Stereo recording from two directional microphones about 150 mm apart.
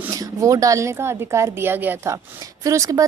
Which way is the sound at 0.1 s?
25° right (ahead or behind).